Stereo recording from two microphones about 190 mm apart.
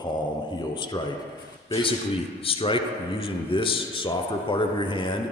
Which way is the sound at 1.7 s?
30° left (ahead or behind).